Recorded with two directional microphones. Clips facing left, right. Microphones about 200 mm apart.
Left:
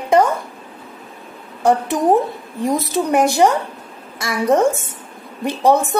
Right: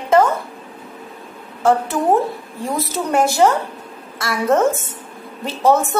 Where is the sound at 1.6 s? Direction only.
15° left (ahead or behind).